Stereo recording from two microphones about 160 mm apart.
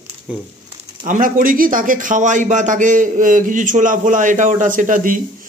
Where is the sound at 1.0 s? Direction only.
55° right (ahead or behind).